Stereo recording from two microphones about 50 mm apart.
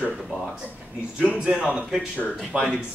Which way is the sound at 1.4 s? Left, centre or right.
Centre.